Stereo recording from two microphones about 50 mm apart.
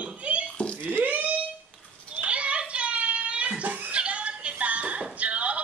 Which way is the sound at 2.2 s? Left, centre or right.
Right.